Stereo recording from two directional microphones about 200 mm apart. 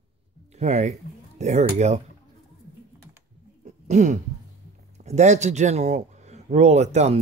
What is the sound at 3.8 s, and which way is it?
Throat clearing, 35° right (ahead or behind).